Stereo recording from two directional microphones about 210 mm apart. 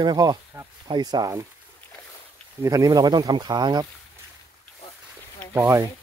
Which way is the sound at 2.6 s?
15° right (ahead or behind).